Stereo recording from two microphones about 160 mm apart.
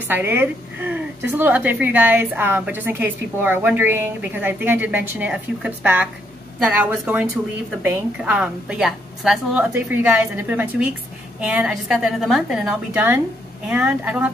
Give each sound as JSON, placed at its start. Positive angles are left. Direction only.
{"t": 0.1, "sound": "a woman's voice", "side_deg": -10}